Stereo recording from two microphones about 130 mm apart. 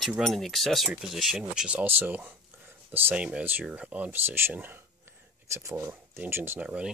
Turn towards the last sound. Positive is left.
turn(degrees=-10)  # may be behind; listen again after turning